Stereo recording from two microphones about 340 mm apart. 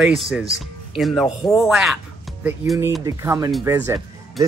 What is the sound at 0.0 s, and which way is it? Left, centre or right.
Speech, centre.